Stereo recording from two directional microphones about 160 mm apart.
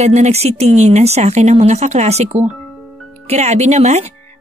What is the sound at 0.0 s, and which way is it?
Speech, 45° right (ahead or behind).